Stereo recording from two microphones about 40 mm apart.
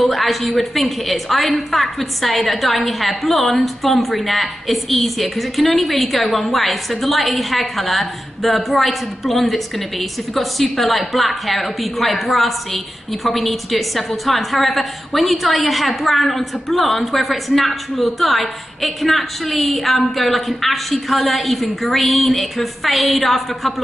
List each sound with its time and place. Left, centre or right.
0.0 s a woman's voice: centre